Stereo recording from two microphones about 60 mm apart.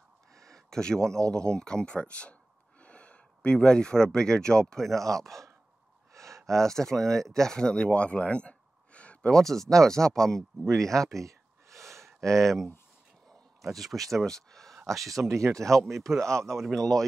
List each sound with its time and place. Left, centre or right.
0.4 s a sound: centre
1.3 s speech: centre
6.1 s a sound: right
6.4 s speech: centre
9.3 s speech: centre
11.2 s a sound: right
12.4 s speech: centre
15.0 s speech: right
15.8 s speech: centre
16.3 s speech: right
16.5 s speech: centre